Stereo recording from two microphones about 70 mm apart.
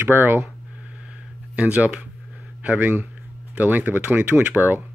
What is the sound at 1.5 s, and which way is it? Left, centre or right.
Speech, right.